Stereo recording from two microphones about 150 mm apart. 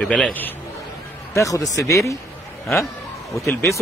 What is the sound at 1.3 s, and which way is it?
Speech, 20° left (ahead or behind).